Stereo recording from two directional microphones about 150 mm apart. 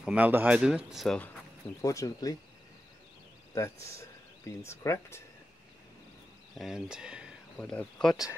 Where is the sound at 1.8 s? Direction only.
20° left (ahead or behind).